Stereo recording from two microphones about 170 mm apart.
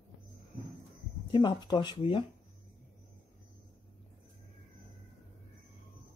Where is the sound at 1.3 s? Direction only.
25° left (ahead or behind).